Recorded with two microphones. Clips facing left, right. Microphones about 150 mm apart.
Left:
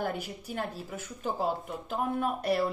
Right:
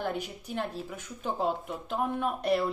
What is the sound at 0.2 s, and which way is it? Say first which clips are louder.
Speech: right 1 dB; 45° left (ahead or behind).